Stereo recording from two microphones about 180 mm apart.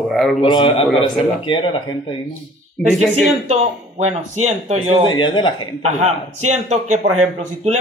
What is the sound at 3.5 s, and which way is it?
Speech, 35° right (ahead or behind).